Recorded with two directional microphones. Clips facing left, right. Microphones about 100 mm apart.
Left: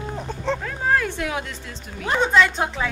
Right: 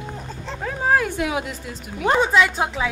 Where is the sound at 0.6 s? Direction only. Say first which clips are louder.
Right 5 dB; 10° right (ahead or behind).